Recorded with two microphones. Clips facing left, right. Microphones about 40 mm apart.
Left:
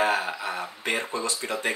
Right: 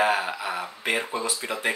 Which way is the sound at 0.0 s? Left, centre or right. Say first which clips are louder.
Right 1 dB; centre.